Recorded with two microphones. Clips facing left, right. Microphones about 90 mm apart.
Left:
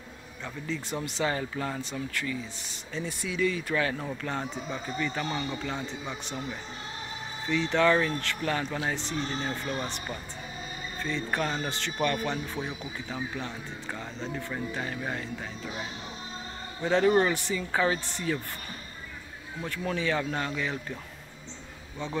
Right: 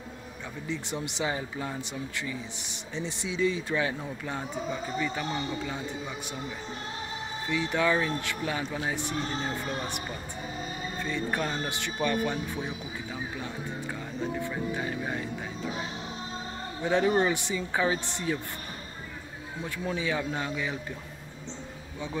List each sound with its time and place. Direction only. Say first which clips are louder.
0.7 s speech: even; 20° right (ahead or behind)
7.4 s speech: left 3 dB; 15° right (ahead or behind)
11.0 s speech: left 1 dB; 15° right (ahead or behind)
12.5 s speech: even; 15° left (ahead or behind)
14.2 s speech: right 3 dB; 15° right (ahead or behind)
16.8 s speech: left 2 dB; 15° right (ahead or behind)
19.6 s speech: left 1 dB; 20° right (ahead or behind)